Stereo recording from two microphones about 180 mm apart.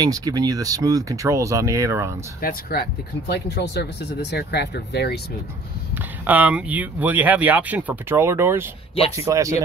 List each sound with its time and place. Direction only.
0.0 s speech: 20° right (ahead or behind)
2.4 s speech: 55° left (ahead or behind)
6.2 s speech: 10° right (ahead or behind)